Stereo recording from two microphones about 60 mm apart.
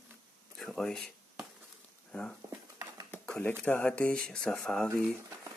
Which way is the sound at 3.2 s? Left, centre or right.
Centre.